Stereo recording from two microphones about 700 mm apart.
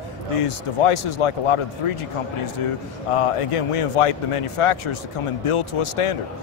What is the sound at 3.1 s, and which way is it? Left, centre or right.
A man's voice, left.